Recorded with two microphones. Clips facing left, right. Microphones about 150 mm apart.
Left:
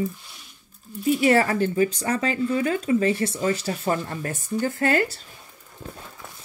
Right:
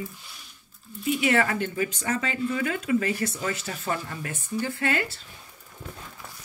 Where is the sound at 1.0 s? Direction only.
40° left (ahead or behind).